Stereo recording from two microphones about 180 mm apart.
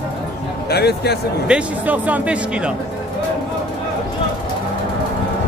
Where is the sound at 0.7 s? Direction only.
60° left (ahead or behind).